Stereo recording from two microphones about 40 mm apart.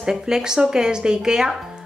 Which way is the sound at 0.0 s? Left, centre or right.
Centre.